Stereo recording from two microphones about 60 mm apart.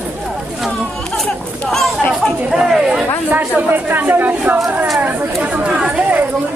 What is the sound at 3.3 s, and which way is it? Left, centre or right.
Speech, right.